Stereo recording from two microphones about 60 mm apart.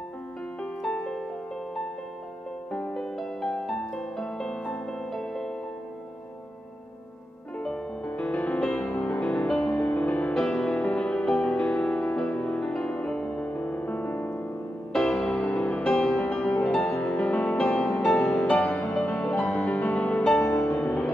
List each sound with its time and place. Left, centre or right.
0.8 s music: centre
2.9 s music: centre
7.5 s music: centre
10.3 s music: centre
10.8 s music: left
14.3 s music: centre
15.2 s music: left
15.7 s music: left
16.5 s music: centre
17.2 s music: left
17.6 s music: centre
18.5 s music: left
19.1 s music: centre